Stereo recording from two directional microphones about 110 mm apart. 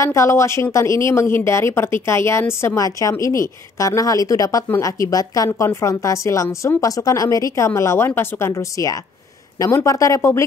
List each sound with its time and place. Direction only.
0.0 s speech: 30° left (ahead or behind)